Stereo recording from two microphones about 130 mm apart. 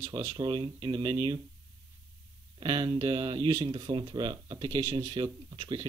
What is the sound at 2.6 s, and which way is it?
Speech, 40° right (ahead or behind).